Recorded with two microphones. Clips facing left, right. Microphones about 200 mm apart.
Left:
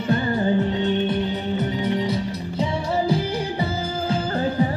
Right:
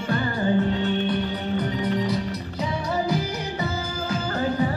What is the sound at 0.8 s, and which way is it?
Music, 25° left (ahead or behind).